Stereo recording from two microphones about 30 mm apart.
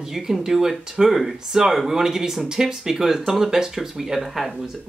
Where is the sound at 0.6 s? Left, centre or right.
Centre.